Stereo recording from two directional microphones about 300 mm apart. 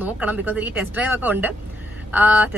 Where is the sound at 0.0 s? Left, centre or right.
Centre.